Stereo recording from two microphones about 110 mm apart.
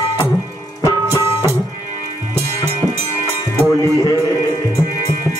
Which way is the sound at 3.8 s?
35° left (ahead or behind).